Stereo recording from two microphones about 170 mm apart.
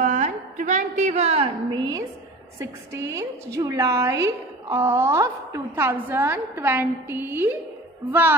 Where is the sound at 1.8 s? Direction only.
20° right (ahead or behind).